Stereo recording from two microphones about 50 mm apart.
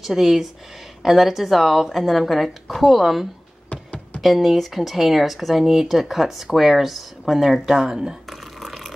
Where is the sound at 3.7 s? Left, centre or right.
Left.